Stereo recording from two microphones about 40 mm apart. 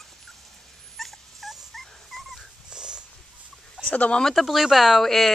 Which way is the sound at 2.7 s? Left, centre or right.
Right.